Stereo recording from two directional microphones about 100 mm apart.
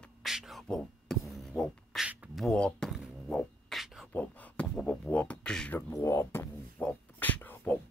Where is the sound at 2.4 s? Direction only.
5° left (ahead or behind).